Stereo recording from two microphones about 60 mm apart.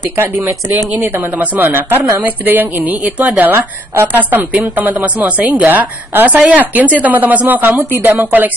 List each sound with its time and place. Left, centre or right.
0.9 s a woman's voice: right